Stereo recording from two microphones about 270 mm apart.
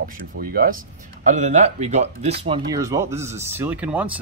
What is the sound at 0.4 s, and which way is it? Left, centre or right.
Speech, right.